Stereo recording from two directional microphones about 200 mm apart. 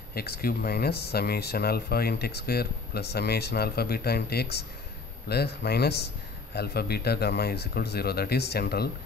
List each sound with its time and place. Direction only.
0.1 s speech: 50° left (ahead or behind)